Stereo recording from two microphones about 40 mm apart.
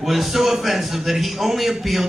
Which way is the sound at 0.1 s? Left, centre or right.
Centre.